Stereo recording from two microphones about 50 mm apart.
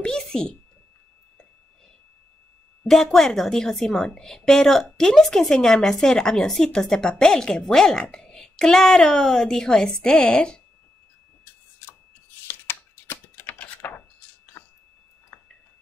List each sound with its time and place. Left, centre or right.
0.0 s a child's voice: centre
2.9 s a woman's voice: centre
12.4 s a sound: left